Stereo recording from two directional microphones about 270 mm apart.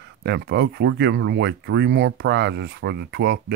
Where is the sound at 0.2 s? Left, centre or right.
Right.